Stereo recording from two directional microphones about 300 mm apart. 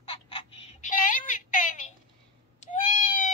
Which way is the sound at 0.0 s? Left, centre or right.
Centre.